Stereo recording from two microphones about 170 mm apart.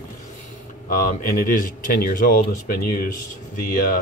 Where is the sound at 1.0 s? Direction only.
55° left (ahead or behind).